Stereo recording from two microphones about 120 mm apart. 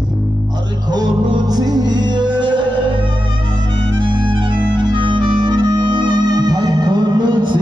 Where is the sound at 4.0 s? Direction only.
40° right (ahead or behind).